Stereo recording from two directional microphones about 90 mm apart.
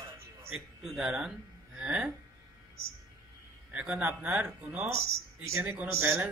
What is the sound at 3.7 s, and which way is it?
Speech, 10° right (ahead or behind).